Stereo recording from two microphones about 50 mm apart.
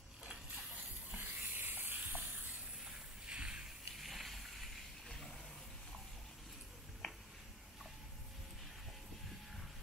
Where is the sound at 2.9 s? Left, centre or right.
Centre.